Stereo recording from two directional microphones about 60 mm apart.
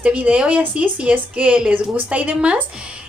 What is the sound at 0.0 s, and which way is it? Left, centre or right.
Speech, right.